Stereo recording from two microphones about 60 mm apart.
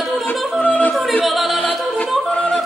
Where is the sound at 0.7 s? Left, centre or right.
Left.